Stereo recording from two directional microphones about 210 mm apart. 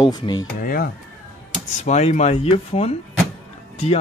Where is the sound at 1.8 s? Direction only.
35° left (ahead or behind).